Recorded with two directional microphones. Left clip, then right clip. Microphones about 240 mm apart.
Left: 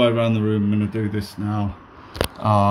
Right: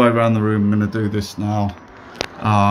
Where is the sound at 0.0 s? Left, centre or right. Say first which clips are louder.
Right 3 dB; centre.